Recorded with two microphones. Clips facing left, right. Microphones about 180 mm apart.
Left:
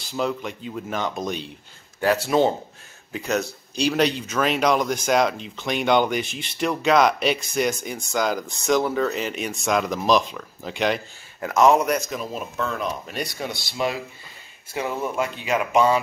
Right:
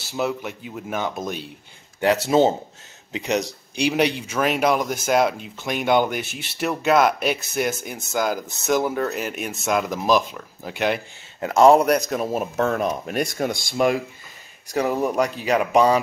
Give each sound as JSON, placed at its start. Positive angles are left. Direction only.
{"t": 0.0, "sound": "speech", "side_deg": -10}
{"t": 2.0, "sound": "speech", "side_deg": -20}
{"t": 11.4, "sound": "speech", "side_deg": -30}
{"t": 12.0, "sound": "speech", "side_deg": -45}
{"t": 12.3, "sound": "speech", "side_deg": -70}
{"t": 12.6, "sound": "speech", "side_deg": -50}